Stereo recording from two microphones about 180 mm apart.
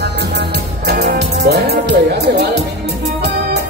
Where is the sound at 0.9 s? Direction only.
65° right (ahead or behind).